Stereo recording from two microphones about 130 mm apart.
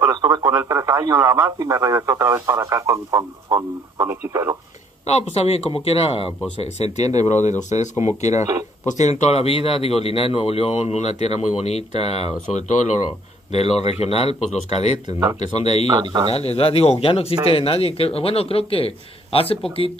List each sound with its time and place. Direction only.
0.1 s speech: 30° right (ahead or behind)
5.0 s speech: 50° left (ahead or behind); by 13.0 s 70° left (ahead or behind)
13.5 s speech: 55° left (ahead or behind)
16.0 s speech: 35° right (ahead or behind)
16.3 s speech: 50° left (ahead or behind)